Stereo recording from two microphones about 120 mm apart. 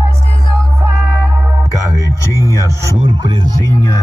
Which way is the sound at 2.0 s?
25° left (ahead or behind).